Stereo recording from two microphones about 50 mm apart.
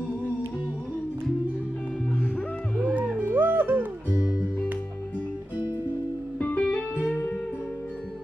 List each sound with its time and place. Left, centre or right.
2.8 s music: right
4.1 s music: right
6.4 s music: left